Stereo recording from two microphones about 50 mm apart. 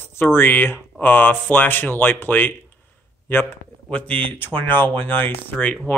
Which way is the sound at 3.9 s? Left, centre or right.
Left.